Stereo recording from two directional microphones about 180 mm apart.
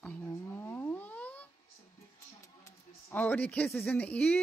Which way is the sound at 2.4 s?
15° left (ahead or behind).